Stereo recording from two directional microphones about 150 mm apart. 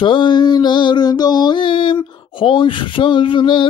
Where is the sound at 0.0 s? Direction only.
35° left (ahead or behind).